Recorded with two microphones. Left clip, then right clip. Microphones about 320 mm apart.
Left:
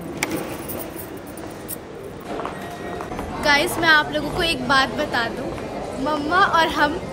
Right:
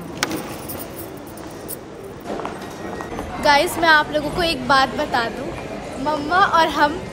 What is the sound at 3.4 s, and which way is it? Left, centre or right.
A woman's voice, centre.